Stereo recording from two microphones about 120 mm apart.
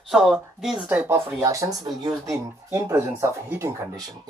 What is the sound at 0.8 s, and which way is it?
Speech, 15° right (ahead or behind).